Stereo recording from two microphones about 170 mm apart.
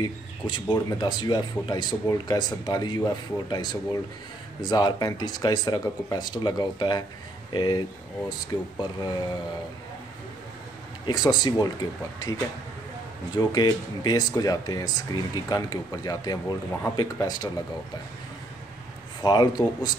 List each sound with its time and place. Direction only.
0.0 s speech: 25° left (ahead or behind)
11.1 s speech: 25° left (ahead or behind)
19.2 s speech: 25° left (ahead or behind)